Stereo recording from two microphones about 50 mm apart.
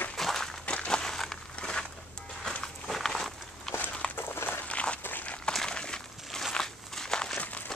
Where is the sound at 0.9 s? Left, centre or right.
Centre.